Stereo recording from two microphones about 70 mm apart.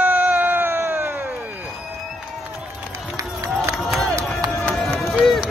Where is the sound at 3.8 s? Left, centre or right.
Centre.